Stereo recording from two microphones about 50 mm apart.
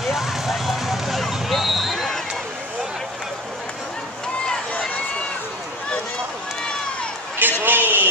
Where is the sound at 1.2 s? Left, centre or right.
Centre.